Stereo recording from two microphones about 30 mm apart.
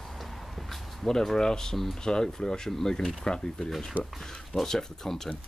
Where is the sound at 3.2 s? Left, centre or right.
Left.